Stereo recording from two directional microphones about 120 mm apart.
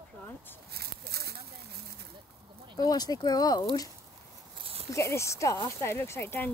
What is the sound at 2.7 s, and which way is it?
Speech, 35° left (ahead or behind).